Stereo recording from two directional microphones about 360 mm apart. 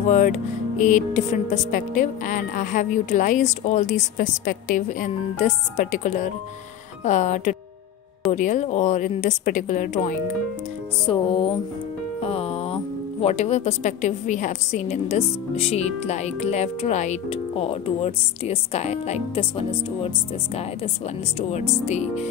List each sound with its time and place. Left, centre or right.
0.1 s a woman's voice: left
12.2 s music: centre
13.2 s a woman's voice: centre
21.4 s speech: centre